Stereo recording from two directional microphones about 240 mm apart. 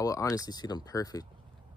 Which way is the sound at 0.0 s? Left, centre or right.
Centre.